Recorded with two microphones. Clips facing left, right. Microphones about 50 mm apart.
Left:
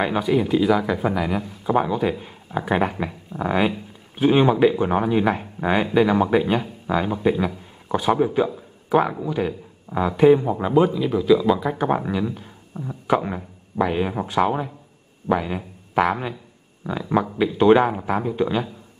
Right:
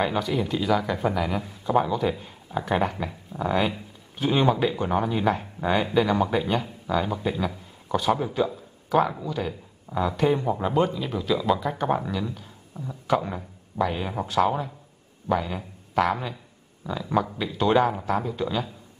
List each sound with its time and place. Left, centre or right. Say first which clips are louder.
0.0 s a man's voice: left 4 dB; centre
10.2 s speech: left 9 dB; centre
11.9 s speech: left 4 dB; left